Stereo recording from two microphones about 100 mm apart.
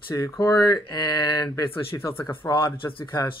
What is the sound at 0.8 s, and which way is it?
Speech, 50° left (ahead or behind).